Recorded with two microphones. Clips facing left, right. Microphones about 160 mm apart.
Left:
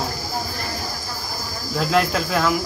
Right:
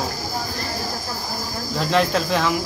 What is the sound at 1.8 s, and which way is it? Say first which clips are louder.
Speech: even; 5° left (ahead or behind).